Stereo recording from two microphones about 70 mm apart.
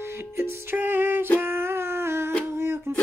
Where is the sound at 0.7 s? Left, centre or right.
Right.